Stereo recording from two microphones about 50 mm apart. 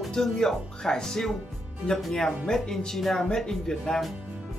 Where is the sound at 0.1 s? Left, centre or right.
Centre.